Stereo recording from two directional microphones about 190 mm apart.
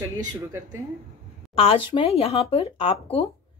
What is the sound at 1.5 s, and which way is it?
Speech, 30° left (ahead or behind).